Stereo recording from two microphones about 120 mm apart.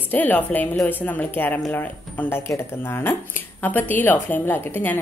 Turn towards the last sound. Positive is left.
turn(degrees=15)  # may be behind; listen again after turning